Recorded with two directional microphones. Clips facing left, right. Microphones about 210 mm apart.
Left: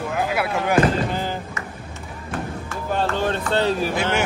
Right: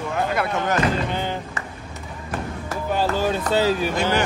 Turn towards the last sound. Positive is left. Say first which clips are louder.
# even
turn(degrees=5)  # may be behind; listen again after turning